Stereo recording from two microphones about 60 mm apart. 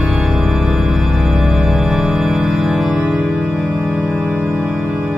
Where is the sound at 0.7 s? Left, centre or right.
Right.